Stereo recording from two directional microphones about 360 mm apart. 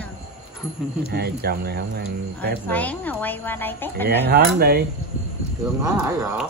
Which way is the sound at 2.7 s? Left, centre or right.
Centre.